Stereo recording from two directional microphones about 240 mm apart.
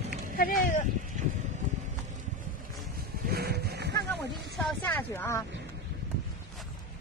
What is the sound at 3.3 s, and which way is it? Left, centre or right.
Goat, right.